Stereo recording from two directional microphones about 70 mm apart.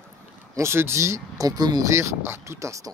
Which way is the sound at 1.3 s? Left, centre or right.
Right.